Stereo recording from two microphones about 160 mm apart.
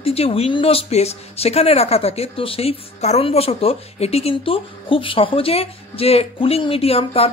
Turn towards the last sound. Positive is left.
turn(degrees=40)  # may be behind; listen again after turning